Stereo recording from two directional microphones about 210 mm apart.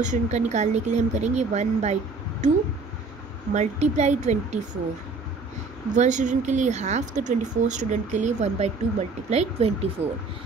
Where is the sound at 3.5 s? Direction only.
35° right (ahead or behind).